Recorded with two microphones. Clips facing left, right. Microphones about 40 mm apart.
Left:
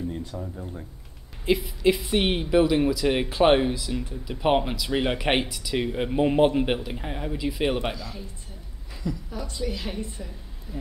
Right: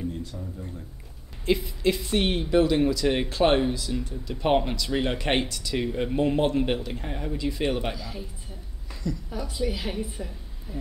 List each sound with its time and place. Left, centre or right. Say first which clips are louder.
0.4 s speech: left 2 dB; left
1.5 s speech: left 2 dB; centre
7.9 s a man's voice: left 1 dB; centre
9.3 s a woman's voice: right 2 dB; centre
10.7 s speech: even; right